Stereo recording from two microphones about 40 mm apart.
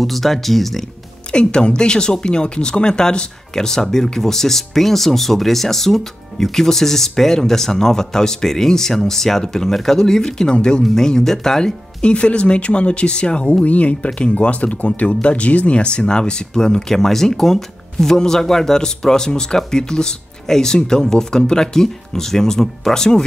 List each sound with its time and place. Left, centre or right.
0.0 s speech: centre
1.3 s speech: left
12.0 s speech: left